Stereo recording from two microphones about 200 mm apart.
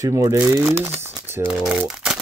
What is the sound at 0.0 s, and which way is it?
Speech, 15° right (ahead or behind).